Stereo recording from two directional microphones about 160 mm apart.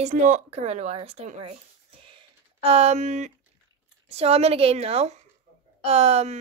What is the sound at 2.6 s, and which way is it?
A woman's voice, 40° right (ahead or behind).